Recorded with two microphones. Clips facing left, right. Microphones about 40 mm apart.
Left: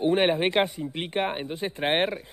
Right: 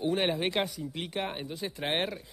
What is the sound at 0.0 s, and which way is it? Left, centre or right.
A man's voice, left.